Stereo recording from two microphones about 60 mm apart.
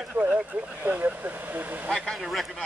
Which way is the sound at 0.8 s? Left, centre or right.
Right.